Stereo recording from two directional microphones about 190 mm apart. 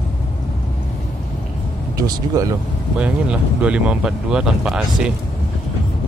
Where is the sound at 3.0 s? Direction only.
5° right (ahead or behind).